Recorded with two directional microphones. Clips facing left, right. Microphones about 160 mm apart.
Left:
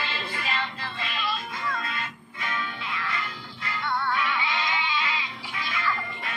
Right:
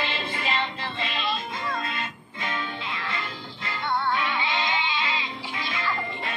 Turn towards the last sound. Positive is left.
turn(degrees=-25)  # may be behind; listen again after turning